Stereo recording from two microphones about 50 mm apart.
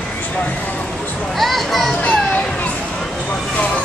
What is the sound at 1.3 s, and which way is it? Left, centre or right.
Children playing, centre.